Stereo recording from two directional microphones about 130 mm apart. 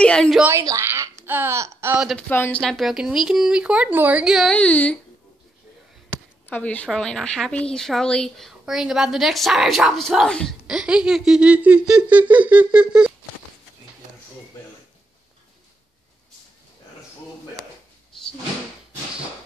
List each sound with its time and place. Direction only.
0.0 s speech: 5° left (ahead or behind)
0.4 s speech: 20° right (ahead or behind)
2.1 s speech: 15° left (ahead or behind)
2.6 s a woman's voice: centre (ahead or behind)
4.6 s speech: 10° left (ahead or behind)
6.5 s a woman's voice: 10° left (ahead or behind)
10.7 s speech: 5° right (ahead or behind)
18.1 s cupboard open or close: 5° left (ahead or behind)